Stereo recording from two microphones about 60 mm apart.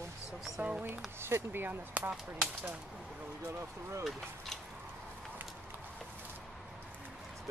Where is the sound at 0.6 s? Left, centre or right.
Right.